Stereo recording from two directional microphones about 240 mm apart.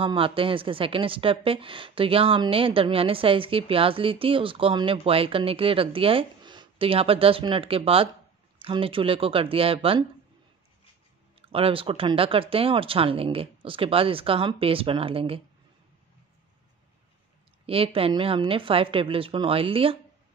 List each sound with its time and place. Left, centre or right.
0.0 s a woman's voice: right
11.5 s a woman's voice: right
17.6 s a woman's voice: right